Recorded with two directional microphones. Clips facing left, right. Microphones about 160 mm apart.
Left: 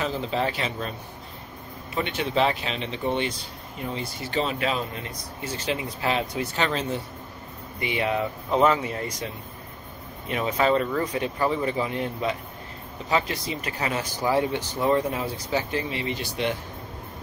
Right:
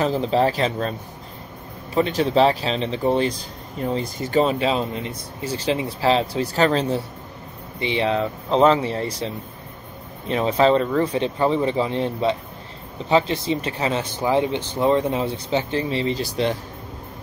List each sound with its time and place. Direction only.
0.0 s speech: 35° right (ahead or behind)
2.0 s speech: 35° right (ahead or behind)
4.6 s speech: 30° right (ahead or behind)